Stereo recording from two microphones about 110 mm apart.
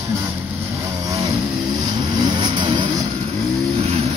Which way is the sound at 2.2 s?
45° right (ahead or behind).